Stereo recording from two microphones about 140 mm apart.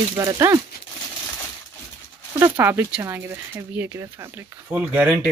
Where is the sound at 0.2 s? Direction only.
20° right (ahead or behind).